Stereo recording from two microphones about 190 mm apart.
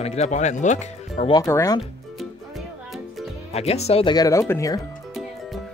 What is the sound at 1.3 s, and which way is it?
Speech, 20° left (ahead or behind).